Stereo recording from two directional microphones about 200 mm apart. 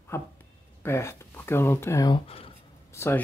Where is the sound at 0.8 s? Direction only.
15° left (ahead or behind).